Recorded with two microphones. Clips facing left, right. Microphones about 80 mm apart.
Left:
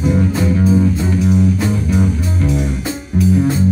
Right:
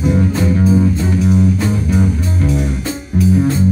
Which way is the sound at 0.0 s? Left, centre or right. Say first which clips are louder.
Right 1 dB; centre.